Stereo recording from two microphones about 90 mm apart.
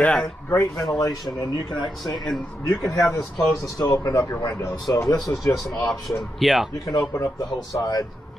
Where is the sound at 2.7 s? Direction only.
40° left (ahead or behind).